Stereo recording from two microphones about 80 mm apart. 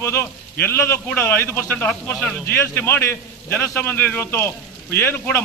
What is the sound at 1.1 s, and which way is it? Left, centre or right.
A man's voice, left.